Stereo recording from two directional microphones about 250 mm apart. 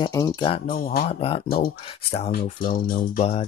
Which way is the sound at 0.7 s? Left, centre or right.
Left.